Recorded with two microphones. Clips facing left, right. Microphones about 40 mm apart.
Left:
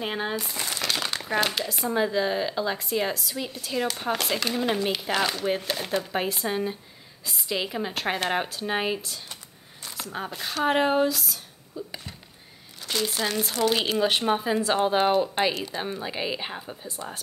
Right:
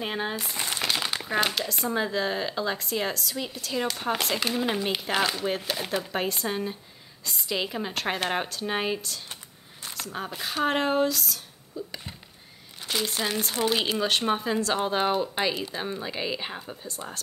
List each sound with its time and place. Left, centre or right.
0.0 s speech: centre
0.5 s speech: centre
0.9 s speech: centre
11.7 s a sound: centre
12.8 s speech: centre